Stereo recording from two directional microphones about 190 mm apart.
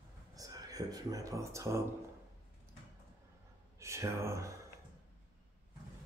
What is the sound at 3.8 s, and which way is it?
Speech, 15° right (ahead or behind).